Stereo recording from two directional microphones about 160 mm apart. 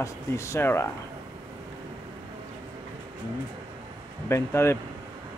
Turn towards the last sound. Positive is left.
turn(degrees=15)  # may be behind; listen again after turning